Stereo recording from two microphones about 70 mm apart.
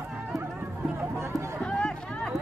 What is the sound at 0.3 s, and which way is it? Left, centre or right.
Music, centre.